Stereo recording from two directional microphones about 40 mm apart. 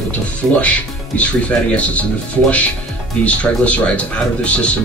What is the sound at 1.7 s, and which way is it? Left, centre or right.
Speech, left.